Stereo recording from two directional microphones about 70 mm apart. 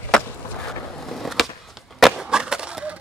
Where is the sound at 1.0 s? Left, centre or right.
Centre.